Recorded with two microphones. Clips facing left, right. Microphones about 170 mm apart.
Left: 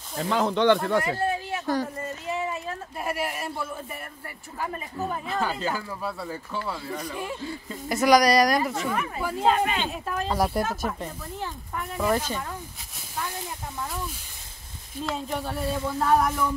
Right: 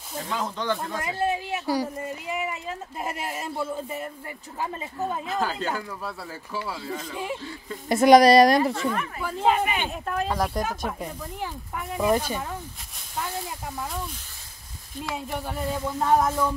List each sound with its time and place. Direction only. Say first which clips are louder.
0.3 s speech: left 8 dB; 70° left (ahead or behind)
1.0 s speech: even; 15° right (ahead or behind)
5.3 s speech: left 2 dB; centre (ahead or behind)
7.1 s speech: even; 20° right (ahead or behind)
8.7 s speech: even; 10° left (ahead or behind)
9.5 s speech: even; 15° right (ahead or behind)
10.0 s speech: right 2 dB; centre (ahead or behind)
10.3 s speech: left 4 dB; 10° left (ahead or behind)
10.9 s speech: even; 10° right (ahead or behind)
15.0 s speech: left 1 dB; 15° right (ahead or behind)